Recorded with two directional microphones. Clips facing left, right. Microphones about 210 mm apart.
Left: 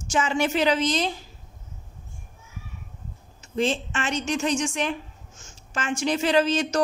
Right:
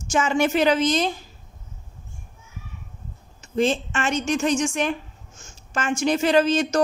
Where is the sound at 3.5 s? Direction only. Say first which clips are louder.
Right 3 dB; 45° right (ahead or behind).